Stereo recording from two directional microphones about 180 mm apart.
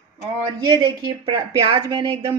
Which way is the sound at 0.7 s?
25° right (ahead or behind).